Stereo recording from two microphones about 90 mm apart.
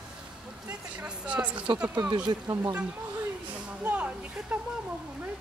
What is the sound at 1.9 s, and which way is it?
Speech, 45° right (ahead or behind).